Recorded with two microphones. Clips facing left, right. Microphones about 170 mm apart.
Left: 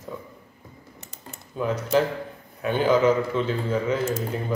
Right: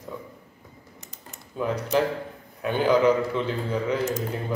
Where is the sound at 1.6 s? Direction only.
5° left (ahead or behind).